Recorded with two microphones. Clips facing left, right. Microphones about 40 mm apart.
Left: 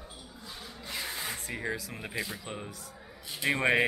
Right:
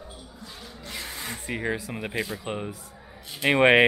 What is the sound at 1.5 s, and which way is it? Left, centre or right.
Speech, right.